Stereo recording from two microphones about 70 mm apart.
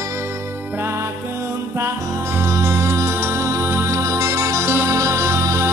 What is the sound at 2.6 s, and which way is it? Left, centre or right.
Music, right.